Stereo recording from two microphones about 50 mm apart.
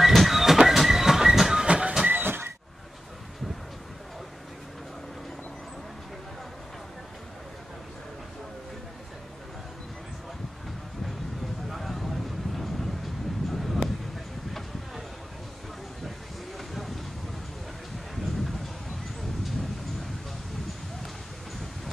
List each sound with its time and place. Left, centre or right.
0.0 s train: centre
2.0 s a sound: right
11.7 s vehicle: centre
16.5 s vehicle: centre